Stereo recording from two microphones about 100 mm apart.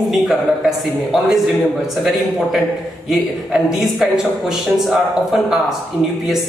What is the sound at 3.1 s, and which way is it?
A woman's voice, centre (ahead or behind).